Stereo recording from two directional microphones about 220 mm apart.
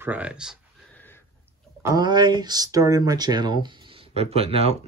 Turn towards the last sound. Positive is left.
turn(degrees=-25)  # may be behind; listen again after turning